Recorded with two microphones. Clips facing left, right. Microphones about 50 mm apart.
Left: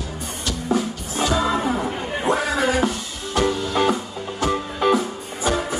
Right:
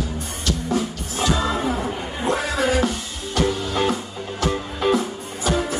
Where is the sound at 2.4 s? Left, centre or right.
Centre.